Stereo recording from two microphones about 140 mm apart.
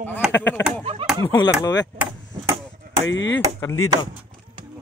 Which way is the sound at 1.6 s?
30° left (ahead or behind).